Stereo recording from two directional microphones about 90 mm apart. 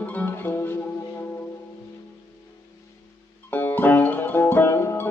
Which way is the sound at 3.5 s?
20° left (ahead or behind).